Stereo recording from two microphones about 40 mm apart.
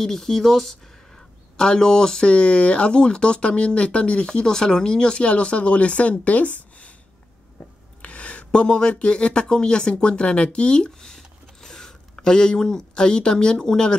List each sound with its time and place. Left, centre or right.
0.0 s speech: centre; by 6.9 s left
8.0 s a sound: left
8.5 s speech: left